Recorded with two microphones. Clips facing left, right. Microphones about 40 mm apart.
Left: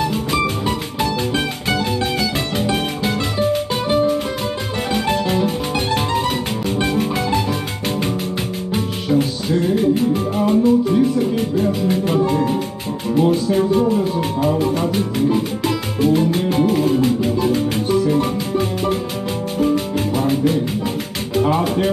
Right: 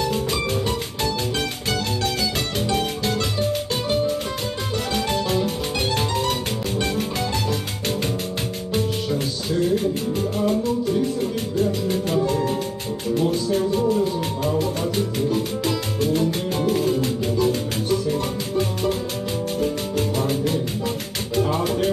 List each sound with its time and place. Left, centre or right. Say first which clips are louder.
2.6 s music: left 2 dB; centre
6.8 s music: left 6 dB; centre
9.1 s music: left 11 dB; centre
14.6 s speech: left 4 dB; centre
16.0 s music: left 7 dB; centre